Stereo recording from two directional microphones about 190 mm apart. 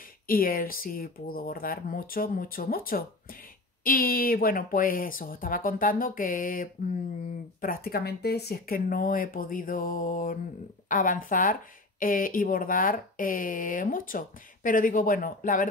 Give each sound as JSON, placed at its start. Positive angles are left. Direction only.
{"t": 0.3, "sound": "speech", "side_deg": 50}